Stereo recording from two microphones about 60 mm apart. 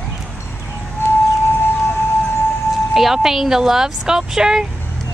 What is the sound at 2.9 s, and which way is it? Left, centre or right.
Speech, centre.